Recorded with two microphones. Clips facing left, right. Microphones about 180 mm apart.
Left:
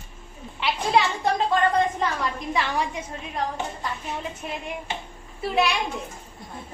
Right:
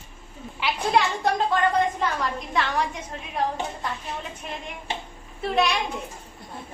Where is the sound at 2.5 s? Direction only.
10° left (ahead or behind).